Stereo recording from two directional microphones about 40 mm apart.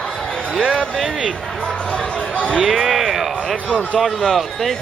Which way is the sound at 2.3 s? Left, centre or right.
Left.